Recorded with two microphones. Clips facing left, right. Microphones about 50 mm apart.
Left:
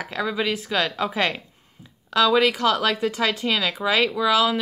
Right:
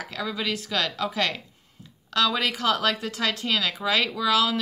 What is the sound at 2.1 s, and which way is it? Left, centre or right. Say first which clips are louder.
Speech: left 6 dB; centre.